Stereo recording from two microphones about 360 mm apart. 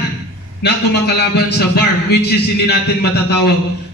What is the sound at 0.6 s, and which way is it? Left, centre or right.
A man's voice, left.